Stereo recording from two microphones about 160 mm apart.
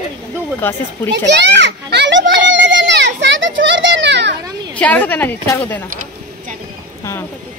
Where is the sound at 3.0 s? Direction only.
90° right.